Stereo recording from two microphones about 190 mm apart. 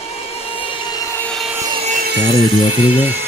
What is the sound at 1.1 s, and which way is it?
Wood, 10° left (ahead or behind).